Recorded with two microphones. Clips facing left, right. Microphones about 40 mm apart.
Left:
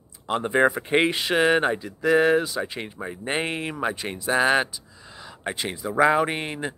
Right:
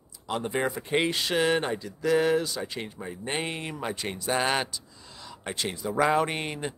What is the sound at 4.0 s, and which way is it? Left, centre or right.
Speech, centre.